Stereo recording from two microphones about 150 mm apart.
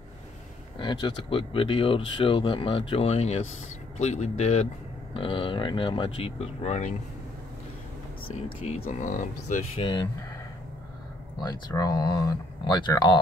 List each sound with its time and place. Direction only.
0.7 s speech: 30° left (ahead or behind); by 4.6 s 50° left (ahead or behind)
5.1 s speech: 35° left (ahead or behind)
8.6 s speech: 40° left (ahead or behind)
9.0 s speech: 55° left (ahead or behind)
9.8 s speech: 35° left (ahead or behind)
11.4 s speech: 25° left (ahead or behind)